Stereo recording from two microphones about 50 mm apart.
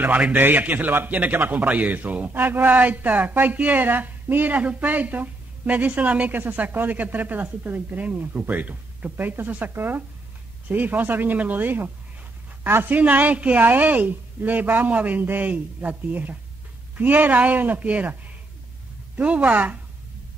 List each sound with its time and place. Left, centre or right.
0.1 s a man's voice: right
12.9 s a woman's voice: right
19.1 s a woman's voice: right